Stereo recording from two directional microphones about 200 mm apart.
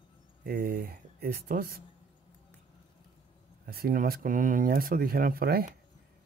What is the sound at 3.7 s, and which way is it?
Speech, 50° right (ahead or behind).